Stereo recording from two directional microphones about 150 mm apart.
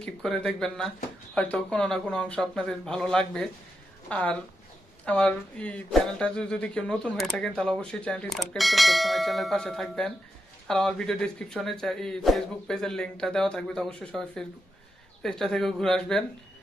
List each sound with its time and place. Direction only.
0.0 s speech: 5° left (ahead or behind)